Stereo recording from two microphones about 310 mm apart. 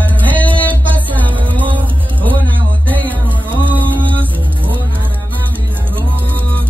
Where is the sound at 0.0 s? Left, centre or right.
Centre.